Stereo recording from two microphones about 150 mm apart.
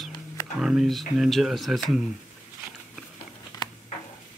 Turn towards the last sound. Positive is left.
turn(degrees=25)  # may be behind; listen again after turning